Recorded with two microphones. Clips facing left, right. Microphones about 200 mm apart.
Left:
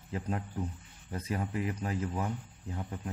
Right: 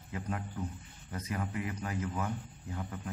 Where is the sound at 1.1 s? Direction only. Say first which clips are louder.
Left 2 dB; 30° left (ahead or behind).